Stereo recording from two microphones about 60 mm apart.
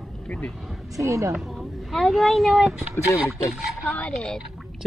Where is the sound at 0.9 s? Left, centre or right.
Right.